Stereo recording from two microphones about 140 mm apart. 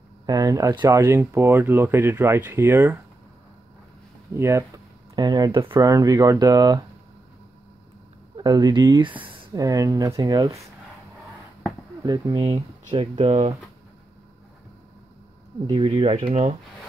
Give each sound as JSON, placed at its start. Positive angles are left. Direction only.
{"t": 0.3, "sound": "speech", "side_deg": -25}
{"t": 4.4, "sound": "speech", "side_deg": -20}
{"t": 5.9, "sound": "speech", "side_deg": -25}
{"t": 8.4, "sound": "speech", "side_deg": -30}
{"t": 12.0, "sound": "speech", "side_deg": -25}
{"t": 15.6, "sound": "speech", "side_deg": -40}